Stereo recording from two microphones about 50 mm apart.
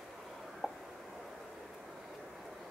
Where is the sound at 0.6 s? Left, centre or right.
Centre.